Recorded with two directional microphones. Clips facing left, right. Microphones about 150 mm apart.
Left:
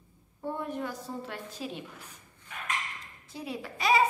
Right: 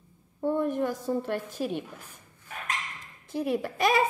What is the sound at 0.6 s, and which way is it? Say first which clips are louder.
A woman's voice: right 7 dB; 50° right (ahead or behind).